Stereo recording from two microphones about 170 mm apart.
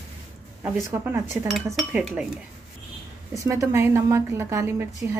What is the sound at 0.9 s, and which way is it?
A woman's voice, 10° right (ahead or behind).